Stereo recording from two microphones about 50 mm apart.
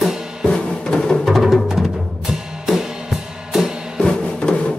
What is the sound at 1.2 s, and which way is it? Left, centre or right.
Music, centre.